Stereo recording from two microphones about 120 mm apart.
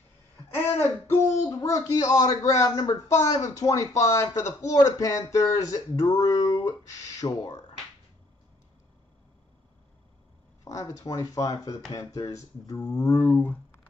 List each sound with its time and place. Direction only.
0.7 s speech: 20° left (ahead or behind)
10.6 s speech: 30° left (ahead or behind)